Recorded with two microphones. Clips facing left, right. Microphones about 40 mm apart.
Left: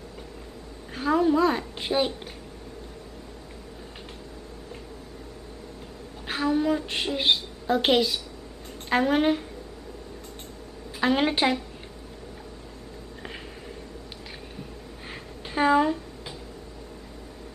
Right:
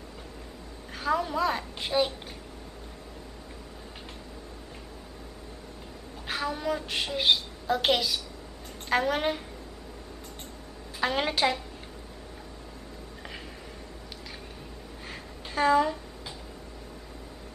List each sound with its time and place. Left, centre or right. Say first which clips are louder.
0.9 s a woman's voice: left 6 dB; centre
6.2 s a woman's voice: left 6 dB; centre
11.0 s a woman's voice: left 4 dB; centre
15.0 s a sound: left 2 dB; centre